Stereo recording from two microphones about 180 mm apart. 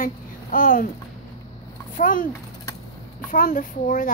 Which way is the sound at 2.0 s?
50° left (ahead or behind).